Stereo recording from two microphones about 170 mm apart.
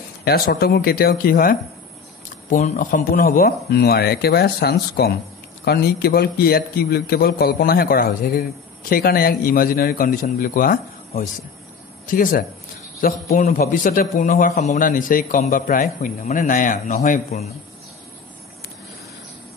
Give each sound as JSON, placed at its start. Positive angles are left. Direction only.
{"t": 0.2, "sound": "a man's voice", "side_deg": 65}
{"t": 2.2, "sound": "a man's voice", "side_deg": 45}